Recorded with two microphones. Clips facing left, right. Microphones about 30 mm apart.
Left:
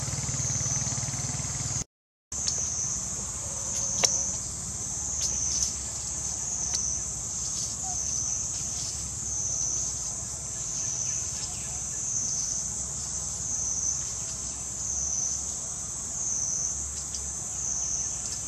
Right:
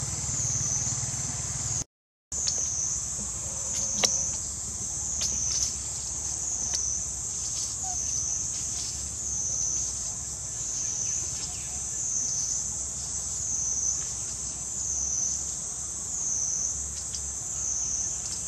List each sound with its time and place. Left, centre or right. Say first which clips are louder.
0.0 s vehicle: even; left
3.7 s cricket: even; centre